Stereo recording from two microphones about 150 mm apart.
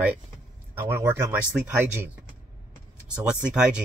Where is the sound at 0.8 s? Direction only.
15° right (ahead or behind).